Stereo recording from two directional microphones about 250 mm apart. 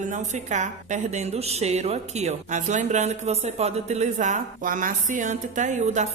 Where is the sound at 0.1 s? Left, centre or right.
Right.